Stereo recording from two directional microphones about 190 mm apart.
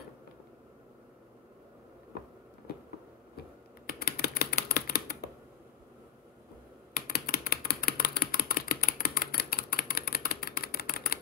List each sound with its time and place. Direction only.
4.0 s typing: 55° left (ahead or behind)
6.9 s typewriter: 55° left (ahead or behind)